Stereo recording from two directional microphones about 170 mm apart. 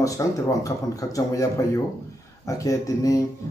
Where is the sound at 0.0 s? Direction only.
20° left (ahead or behind).